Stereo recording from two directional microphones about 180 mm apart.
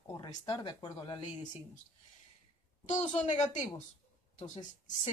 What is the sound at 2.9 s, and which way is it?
Speech, 40° left (ahead or behind).